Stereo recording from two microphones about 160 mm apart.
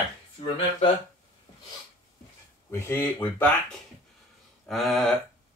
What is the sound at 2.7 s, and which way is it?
Speech, 15° left (ahead or behind).